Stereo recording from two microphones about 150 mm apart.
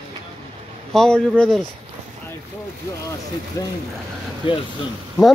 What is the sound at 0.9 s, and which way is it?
Speech, 5° left (ahead or behind).